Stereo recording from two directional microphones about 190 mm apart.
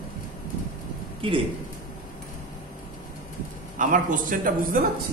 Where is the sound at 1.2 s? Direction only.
30° right (ahead or behind).